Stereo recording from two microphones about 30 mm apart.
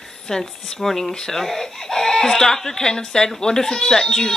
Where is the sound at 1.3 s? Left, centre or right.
Centre.